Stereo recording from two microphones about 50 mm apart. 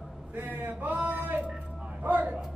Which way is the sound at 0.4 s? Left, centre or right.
Right.